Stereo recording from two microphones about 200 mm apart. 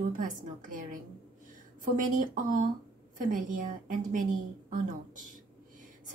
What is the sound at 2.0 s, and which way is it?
A woman's voice, 40° right (ahead or behind).